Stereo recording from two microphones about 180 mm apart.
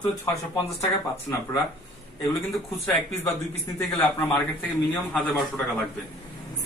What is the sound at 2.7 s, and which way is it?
Speech, 10° left (ahead or behind).